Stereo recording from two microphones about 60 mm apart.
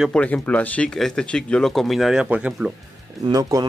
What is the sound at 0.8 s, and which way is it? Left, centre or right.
Speech, centre.